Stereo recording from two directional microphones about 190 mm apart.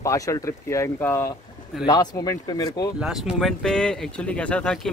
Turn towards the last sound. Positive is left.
turn(degrees=5)  # may be behind; listen again after turning